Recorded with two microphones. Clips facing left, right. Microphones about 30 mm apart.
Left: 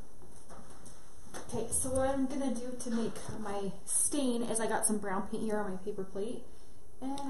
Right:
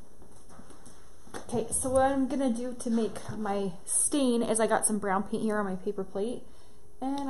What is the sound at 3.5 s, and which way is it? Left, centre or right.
Speech, right.